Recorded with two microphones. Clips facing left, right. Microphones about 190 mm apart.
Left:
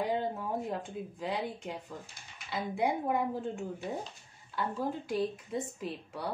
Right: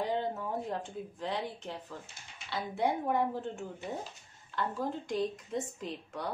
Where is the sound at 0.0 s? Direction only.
10° left (ahead or behind).